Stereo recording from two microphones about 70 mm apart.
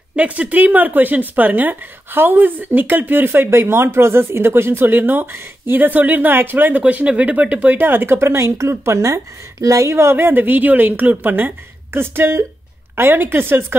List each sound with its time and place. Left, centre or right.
0.1 s speech: centre
6.8 s speech: centre; by 13.7 s right